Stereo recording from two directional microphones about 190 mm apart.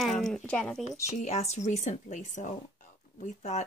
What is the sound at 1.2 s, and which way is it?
Speech, 35° left (ahead or behind).